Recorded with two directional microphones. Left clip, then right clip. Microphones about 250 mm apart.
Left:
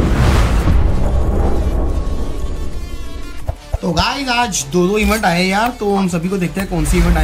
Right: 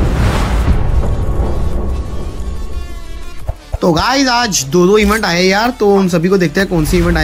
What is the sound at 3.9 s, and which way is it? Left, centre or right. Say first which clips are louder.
Speech: right 3 dB; centre.